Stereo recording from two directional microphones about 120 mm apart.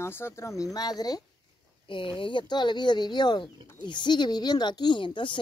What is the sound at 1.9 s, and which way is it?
Speech, 45° left (ahead or behind).